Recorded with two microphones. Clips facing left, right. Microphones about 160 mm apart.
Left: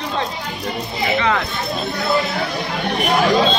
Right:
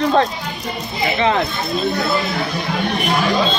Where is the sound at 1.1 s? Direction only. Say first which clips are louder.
Right 3 dB; 25° right (ahead or behind).